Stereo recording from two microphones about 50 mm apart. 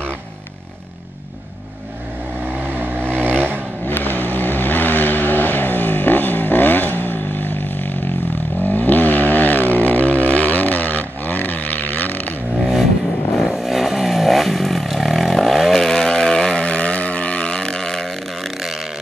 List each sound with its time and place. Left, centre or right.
2.4 s vehicle: right
3.8 s vehicle: left
13.4 s vehicle: centre